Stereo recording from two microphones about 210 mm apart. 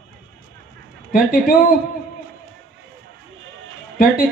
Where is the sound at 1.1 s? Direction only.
40° left (ahead or behind).